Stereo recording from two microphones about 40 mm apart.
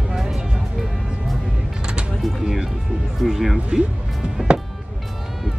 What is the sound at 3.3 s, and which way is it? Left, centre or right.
Speech, centre.